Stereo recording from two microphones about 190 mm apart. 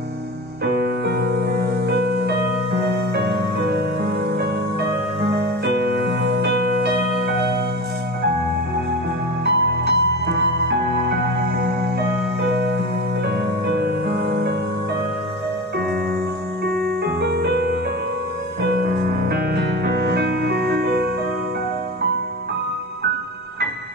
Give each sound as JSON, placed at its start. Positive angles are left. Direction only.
{"t": 0.7, "sound": "music", "side_deg": -60}
{"t": 9.4, "sound": "music", "side_deg": -60}
{"t": 16.8, "sound": "piano", "side_deg": -60}
{"t": 18.6, "sound": "music", "side_deg": -60}